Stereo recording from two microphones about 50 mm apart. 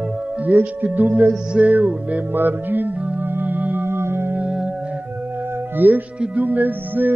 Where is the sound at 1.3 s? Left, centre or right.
Right.